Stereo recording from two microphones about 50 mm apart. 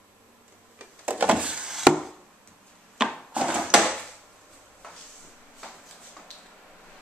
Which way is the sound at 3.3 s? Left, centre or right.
Right.